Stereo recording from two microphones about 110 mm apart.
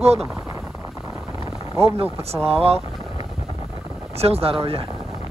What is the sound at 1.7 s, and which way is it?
Speech, 65° right (ahead or behind).